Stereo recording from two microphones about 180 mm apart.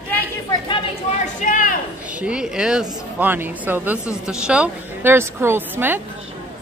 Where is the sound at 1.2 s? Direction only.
45° left (ahead or behind).